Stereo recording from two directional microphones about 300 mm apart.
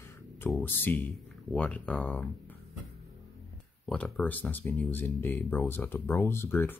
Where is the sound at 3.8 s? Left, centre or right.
Centre.